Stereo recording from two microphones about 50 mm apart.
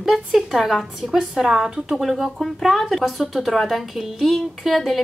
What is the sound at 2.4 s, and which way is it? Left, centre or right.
A woman's voice, centre.